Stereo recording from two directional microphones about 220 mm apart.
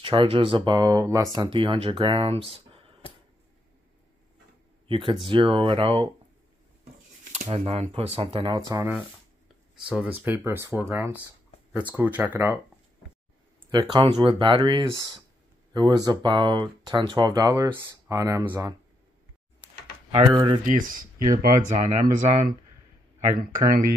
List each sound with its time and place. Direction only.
0.0 s speech: 25° right (ahead or behind)
4.8 s speech: 20° right (ahead or behind)
7.4 s speech: 25° right (ahead or behind)
9.8 s speech: 5° right (ahead or behind)
13.7 s speech: 20° right (ahead or behind)
20.1 s speech: 25° right (ahead or behind)
20.6 s speech: 40° right (ahead or behind)